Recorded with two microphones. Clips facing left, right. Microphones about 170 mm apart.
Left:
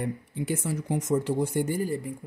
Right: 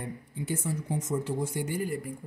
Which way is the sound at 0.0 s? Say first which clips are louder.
Left 6 dB; 75° left (ahead or behind).